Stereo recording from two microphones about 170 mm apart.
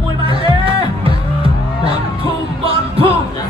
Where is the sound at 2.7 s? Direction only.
35° right (ahead or behind).